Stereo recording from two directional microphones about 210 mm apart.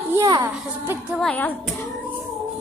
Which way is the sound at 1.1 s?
5° left (ahead or behind).